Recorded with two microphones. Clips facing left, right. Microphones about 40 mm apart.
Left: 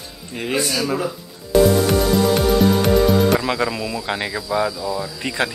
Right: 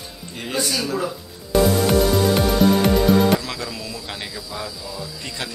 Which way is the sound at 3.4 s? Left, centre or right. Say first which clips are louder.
Left 8 dB; left.